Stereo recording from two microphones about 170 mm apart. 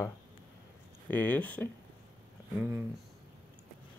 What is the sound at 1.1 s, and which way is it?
Speech, 10° left (ahead or behind).